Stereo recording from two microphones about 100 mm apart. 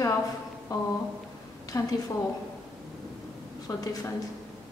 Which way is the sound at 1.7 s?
35° left (ahead or behind).